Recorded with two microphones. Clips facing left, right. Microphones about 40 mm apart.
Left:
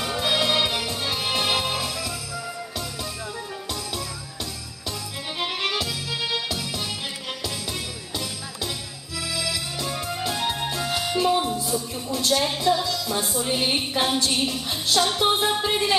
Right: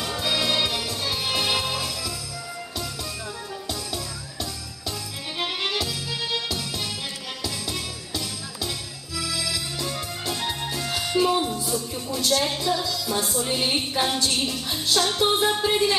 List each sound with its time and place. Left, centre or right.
0.0 s music: centre
5.4 s music: centre